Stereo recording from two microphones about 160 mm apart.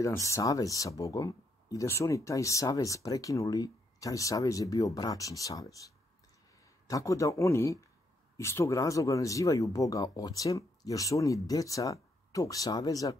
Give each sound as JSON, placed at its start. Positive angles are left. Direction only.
{"t": 0.0, "sound": "speech", "side_deg": 20}